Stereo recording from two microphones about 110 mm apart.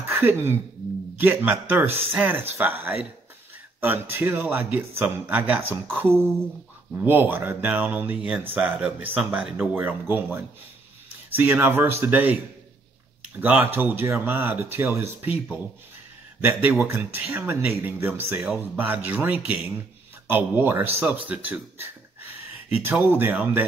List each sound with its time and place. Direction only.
0.0 s speech: 25° right (ahead or behind)
13.4 s speech: 15° right (ahead or behind)
16.4 s speech: 20° right (ahead or behind)
22.8 s speech: 20° right (ahead or behind)